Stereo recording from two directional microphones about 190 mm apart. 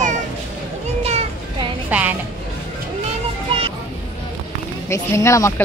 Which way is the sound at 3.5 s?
30° right (ahead or behind).